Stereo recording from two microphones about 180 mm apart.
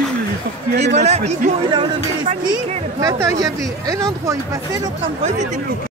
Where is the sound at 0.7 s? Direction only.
40° right (ahead or behind).